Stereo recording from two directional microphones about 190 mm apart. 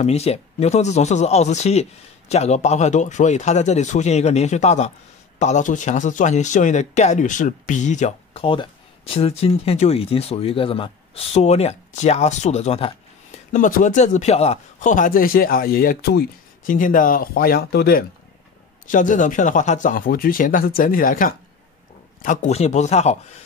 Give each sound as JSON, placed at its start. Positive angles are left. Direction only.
{"t": 0.0, "sound": "speech", "side_deg": 35}
{"t": 13.5, "sound": "speech", "side_deg": 45}
{"t": 18.9, "sound": "speech", "side_deg": 40}